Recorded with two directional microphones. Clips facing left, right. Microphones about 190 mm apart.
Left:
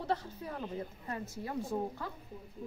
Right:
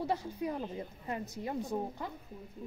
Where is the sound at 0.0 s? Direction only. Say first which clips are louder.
Right 2 dB; 10° right (ahead or behind).